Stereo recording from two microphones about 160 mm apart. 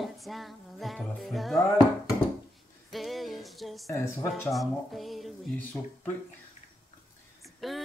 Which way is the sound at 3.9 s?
15° left (ahead or behind).